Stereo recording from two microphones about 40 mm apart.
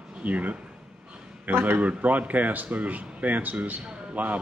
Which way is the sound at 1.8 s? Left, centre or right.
Right.